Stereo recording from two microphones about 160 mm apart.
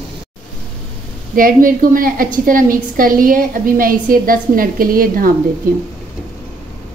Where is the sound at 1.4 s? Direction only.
60° right (ahead or behind).